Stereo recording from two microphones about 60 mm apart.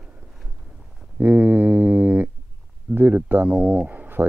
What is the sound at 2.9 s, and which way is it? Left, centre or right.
Speech, right.